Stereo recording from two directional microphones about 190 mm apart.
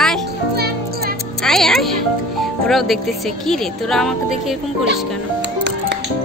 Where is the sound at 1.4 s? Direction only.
Centre (ahead or behind).